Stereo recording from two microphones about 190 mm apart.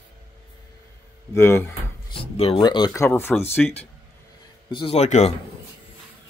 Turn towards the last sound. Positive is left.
turn(degrees=35)  # may be behind; listen again after turning